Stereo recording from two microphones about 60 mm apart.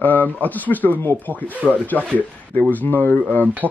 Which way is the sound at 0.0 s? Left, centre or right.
Left.